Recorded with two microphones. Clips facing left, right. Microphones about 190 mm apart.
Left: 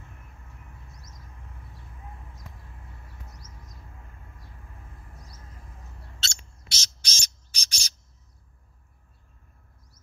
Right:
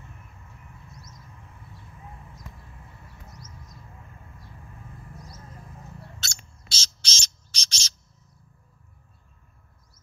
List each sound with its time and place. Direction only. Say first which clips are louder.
6.1 s bird: even; 20° left (ahead or behind)